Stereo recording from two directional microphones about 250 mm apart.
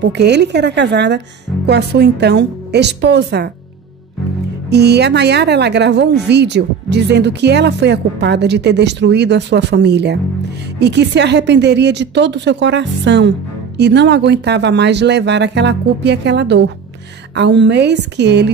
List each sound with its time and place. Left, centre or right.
0.0 s a woman's voice: right
4.6 s a woman's voice: right